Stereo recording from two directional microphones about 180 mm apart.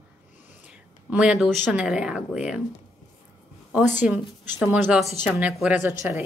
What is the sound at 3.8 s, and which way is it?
Speech, 45° left (ahead or behind).